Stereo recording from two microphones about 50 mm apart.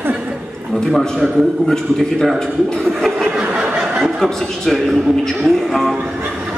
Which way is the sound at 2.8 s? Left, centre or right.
Centre.